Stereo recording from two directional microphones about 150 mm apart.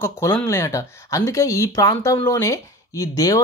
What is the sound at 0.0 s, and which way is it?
Speech, 15° left (ahead or behind).